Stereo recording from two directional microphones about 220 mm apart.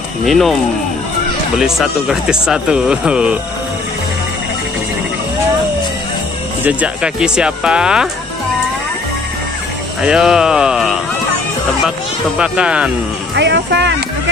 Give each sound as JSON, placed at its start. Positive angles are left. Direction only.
{"t": 0.2, "sound": "speech", "side_deg": 0}
{"t": 1.6, "sound": "speech", "side_deg": 0}
{"t": 6.6, "sound": "speech", "side_deg": -5}
{"t": 10.0, "sound": "speech", "side_deg": -5}
{"t": 12.4, "sound": "speech", "side_deg": -5}
{"t": 13.3, "sound": "speech", "side_deg": -50}